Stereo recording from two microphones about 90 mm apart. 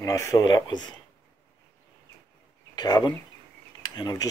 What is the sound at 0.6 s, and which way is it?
Speech, 55° left (ahead or behind).